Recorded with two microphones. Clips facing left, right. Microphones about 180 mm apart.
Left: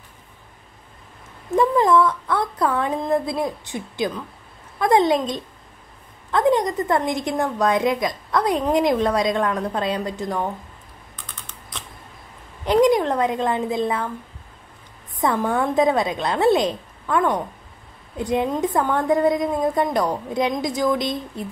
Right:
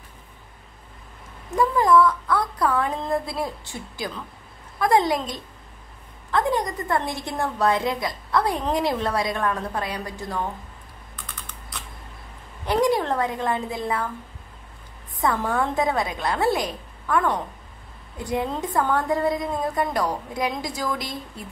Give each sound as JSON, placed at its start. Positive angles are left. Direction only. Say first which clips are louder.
{"t": 1.6, "sound": "a woman's voice", "louder": "left 1 dB", "side_deg": 25}
{"t": 12.6, "sound": "a woman's voice", "louder": "left 5 dB", "side_deg": 20}
{"t": 15.2, "sound": "a woman's voice", "louder": "left 3 dB", "side_deg": 20}